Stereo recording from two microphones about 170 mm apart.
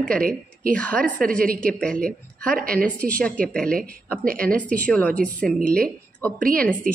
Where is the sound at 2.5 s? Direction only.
55° right (ahead or behind).